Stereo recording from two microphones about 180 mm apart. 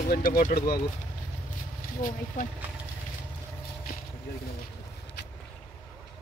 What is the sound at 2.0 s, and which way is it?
Speech, 45° left (ahead or behind).